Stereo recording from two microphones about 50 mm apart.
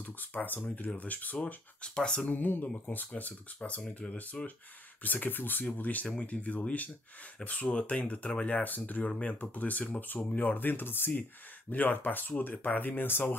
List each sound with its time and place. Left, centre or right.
0.0 s speech: left; by 2.2 s centre
2.2 s speech: left
5.0 s speech: left